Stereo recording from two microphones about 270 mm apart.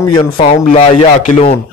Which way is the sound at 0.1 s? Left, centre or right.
Left.